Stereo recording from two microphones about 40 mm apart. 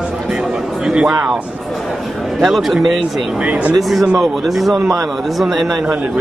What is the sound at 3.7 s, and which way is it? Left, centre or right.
A man's voice, centre.